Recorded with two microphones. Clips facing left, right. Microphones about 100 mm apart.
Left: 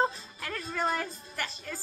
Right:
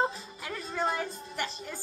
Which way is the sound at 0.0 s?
15° right (ahead or behind).